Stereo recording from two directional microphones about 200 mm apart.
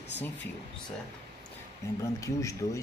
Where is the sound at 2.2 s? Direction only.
15° left (ahead or behind).